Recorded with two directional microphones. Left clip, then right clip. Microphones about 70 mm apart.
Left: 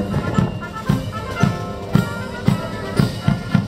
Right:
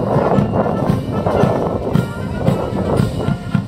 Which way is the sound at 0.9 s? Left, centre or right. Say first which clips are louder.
Right 7 dB; left.